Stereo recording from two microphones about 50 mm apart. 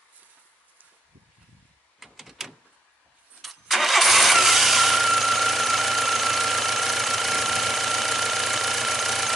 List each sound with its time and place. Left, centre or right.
2.0 s door: centre
3.4 s vehicle: centre